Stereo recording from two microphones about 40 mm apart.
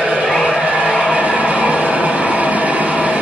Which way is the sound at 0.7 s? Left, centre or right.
Right.